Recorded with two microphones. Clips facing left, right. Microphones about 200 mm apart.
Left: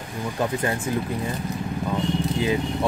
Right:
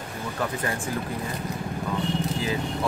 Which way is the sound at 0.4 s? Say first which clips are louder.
Left 4 dB; 25° left (ahead or behind).